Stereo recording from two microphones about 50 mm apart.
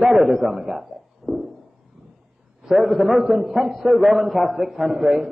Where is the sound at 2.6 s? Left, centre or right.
Centre.